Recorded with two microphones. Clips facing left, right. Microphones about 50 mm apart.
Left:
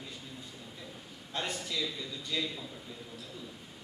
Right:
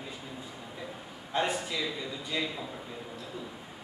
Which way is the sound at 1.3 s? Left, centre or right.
Centre.